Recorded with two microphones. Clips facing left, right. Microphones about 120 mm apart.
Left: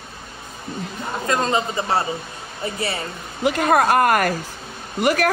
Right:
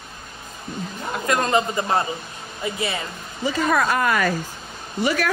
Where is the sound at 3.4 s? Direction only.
60° left (ahead or behind).